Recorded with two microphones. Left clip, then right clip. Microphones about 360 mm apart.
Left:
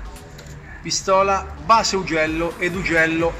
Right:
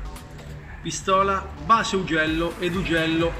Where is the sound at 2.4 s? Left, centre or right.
Left.